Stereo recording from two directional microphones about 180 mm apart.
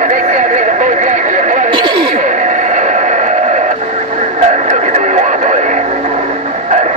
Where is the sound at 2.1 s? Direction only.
40° right (ahead or behind).